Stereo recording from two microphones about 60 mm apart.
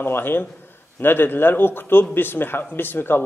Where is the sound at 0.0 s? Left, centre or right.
Left.